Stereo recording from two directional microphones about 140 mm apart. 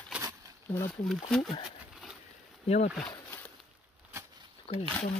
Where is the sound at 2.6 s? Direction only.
50° left (ahead or behind).